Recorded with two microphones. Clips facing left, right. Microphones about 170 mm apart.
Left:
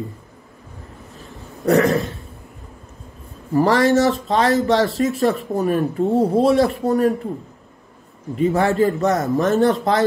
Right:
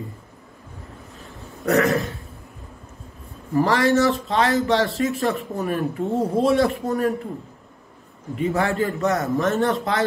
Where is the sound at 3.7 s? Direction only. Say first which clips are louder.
Left 3 dB; 35° left (ahead or behind).